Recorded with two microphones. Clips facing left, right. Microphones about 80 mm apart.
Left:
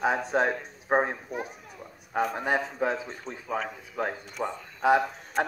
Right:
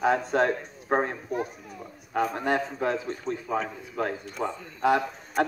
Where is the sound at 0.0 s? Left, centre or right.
Centre.